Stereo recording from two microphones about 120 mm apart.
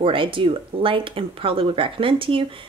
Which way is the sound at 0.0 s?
45° right (ahead or behind).